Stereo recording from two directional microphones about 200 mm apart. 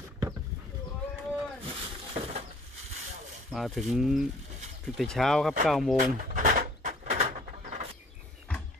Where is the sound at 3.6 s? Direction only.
Centre (ahead or behind).